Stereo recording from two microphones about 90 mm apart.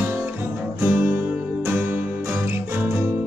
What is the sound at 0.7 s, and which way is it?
Music, 20° right (ahead or behind).